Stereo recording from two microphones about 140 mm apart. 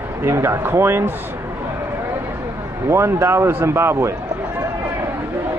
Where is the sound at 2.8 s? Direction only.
20° right (ahead or behind).